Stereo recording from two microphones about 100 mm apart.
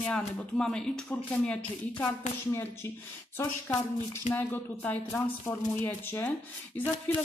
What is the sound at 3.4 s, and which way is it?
Speech, 25° left (ahead or behind).